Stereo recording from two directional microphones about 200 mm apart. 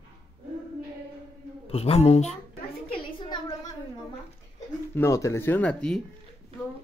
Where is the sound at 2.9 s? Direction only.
20° left (ahead or behind).